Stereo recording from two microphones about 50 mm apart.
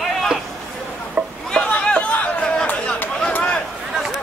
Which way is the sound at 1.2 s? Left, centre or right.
Right.